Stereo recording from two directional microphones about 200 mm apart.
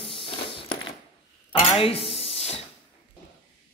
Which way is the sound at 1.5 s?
25° left (ahead or behind).